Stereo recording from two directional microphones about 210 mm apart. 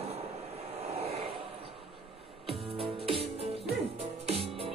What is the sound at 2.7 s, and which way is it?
Music, 25° right (ahead or behind).